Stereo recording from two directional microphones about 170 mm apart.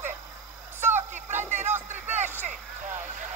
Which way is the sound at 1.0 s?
45° right (ahead or behind).